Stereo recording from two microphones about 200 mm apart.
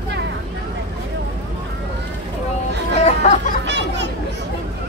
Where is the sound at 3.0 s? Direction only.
35° left (ahead or behind).